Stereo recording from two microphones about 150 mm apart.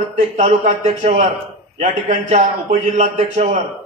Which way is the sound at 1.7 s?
65° right (ahead or behind).